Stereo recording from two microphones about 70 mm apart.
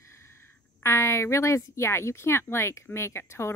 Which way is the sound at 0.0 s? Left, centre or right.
Left.